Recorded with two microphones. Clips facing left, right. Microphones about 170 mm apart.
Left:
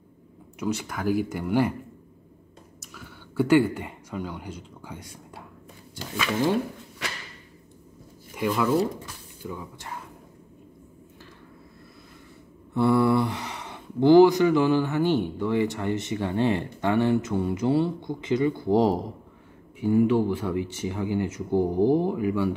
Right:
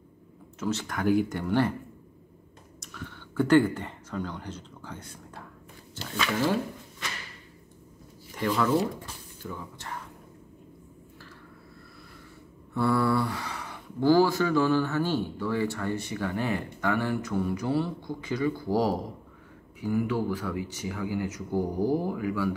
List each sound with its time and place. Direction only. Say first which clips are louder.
0.6 s speech: left 1 dB; 10° left (ahead or behind)
2.8 s speech: right 4 dB; 5° left (ahead or behind)
8.4 s speech: left 2 dB; 10° left (ahead or behind)
12.7 s speech: left 4 dB; 20° left (ahead or behind)